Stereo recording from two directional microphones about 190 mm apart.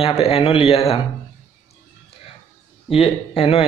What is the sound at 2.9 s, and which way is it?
Speech, 30° left (ahead or behind).